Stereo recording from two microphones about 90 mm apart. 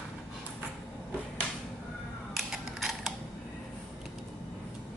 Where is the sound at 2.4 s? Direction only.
Centre (ahead or behind).